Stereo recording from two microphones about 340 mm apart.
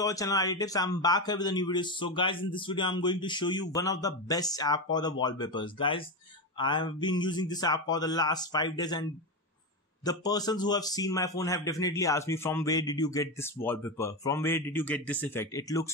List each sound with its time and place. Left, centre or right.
0.0 s a man's voice: centre
10.0 s a man's voice: centre